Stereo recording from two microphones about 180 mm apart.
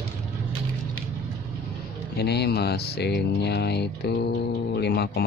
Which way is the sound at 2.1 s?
65° left (ahead or behind).